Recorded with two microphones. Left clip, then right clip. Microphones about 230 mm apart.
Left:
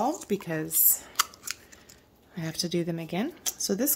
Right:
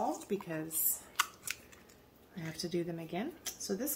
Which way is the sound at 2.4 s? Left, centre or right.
Left.